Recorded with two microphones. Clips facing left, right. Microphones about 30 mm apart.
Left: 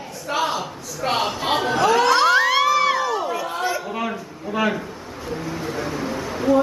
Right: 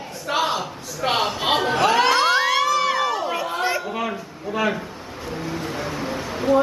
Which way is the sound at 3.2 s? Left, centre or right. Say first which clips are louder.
Right 1 dB; right.